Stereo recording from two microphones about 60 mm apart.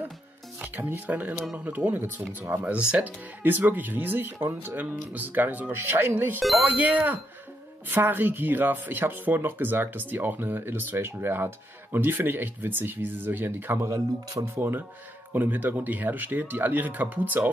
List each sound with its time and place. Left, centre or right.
0.7 s speech: right
2.6 s speech: centre
3.4 s speech: right
13.8 s speech: right
14.6 s speech: right